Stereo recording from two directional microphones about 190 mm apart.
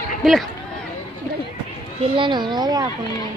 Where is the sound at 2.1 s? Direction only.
25° right (ahead or behind).